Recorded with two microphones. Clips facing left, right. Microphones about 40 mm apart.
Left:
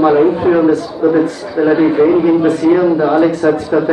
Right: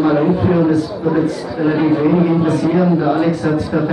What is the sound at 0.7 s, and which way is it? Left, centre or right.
A man's voice, left.